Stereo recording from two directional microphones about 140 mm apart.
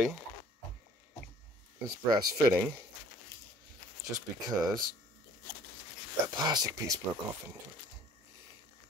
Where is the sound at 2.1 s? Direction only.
15° right (ahead or behind).